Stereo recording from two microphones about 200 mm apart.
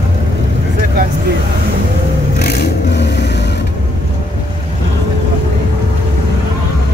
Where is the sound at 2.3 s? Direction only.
55° left (ahead or behind).